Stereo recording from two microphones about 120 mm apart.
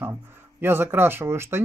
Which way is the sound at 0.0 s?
20° right (ahead or behind).